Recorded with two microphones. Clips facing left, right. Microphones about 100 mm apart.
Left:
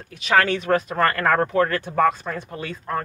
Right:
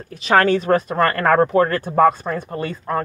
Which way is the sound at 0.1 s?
40° right (ahead or behind).